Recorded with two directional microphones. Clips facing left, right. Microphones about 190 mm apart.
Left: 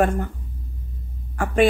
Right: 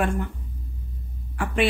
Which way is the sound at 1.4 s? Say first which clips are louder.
Left 3 dB; 45° left (ahead or behind).